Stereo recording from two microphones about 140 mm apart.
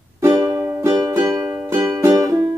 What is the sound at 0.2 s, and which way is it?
Music, 25° right (ahead or behind).